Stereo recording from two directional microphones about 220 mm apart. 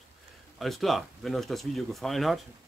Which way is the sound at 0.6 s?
Centre (ahead or behind).